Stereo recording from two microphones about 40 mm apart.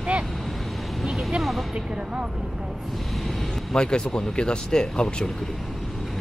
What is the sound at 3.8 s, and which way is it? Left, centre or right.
Speech, left.